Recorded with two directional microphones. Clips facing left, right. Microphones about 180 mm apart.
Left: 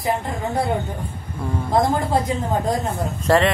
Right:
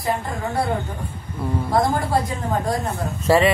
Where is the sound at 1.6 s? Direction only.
20° left (ahead or behind).